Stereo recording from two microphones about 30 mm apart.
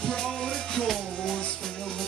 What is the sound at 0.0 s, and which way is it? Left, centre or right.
Music, left.